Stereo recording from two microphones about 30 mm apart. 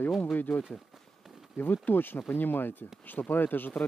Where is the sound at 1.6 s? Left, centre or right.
Left.